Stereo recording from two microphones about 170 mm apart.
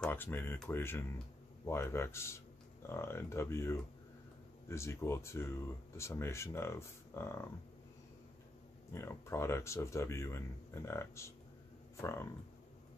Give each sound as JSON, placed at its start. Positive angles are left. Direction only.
{"t": 0.0, "sound": "speech", "side_deg": 10}
{"t": 8.9, "sound": "speech", "side_deg": 15}